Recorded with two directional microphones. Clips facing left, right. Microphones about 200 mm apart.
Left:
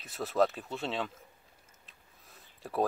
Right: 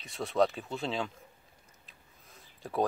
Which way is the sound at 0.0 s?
5° left (ahead or behind).